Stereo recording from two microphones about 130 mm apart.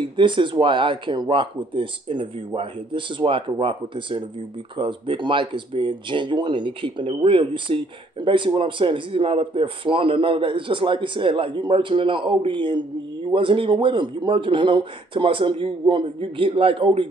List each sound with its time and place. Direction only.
0.2 s a man's voice: 40° right (ahead or behind)